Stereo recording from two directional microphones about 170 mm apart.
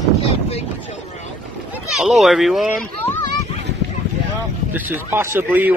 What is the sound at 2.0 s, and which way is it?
Speech, 5° right (ahead or behind).